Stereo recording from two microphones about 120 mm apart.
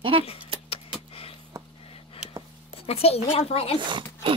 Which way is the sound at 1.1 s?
50° left (ahead or behind).